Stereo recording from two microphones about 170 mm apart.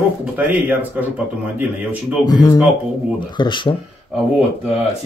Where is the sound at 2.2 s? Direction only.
20° left (ahead or behind).